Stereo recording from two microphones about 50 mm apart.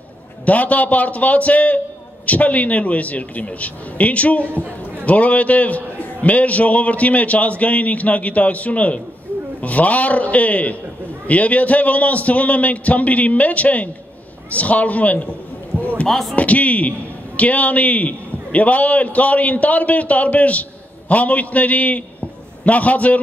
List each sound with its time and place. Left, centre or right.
0.5 s a man's voice: left
16.1 s speech: centre
16.3 s a man's voice: left